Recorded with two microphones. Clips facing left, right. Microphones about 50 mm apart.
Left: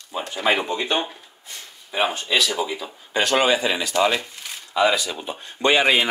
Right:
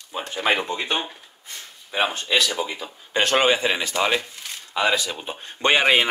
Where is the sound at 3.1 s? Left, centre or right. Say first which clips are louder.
Even; right.